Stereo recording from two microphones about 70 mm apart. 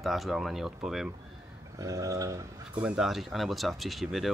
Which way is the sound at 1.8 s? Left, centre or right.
Right.